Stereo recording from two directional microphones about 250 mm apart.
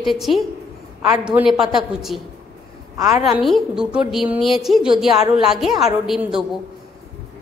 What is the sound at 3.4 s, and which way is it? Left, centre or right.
A woman's voice, centre.